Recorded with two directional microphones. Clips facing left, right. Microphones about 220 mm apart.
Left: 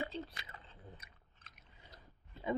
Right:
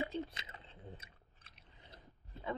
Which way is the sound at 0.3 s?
20° right (ahead or behind).